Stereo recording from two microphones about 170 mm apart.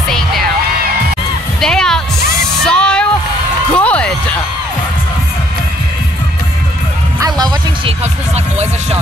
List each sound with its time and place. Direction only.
1.6 s music: 5° left (ahead or behind)
2.6 s a sound: 5° left (ahead or behind)
7.2 s music: 25° right (ahead or behind)